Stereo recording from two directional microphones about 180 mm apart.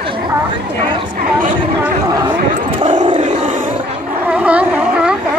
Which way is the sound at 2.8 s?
25° right (ahead or behind).